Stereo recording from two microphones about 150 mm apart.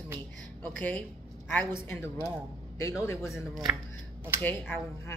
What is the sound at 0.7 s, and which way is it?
A man's voice, 10° left (ahead or behind).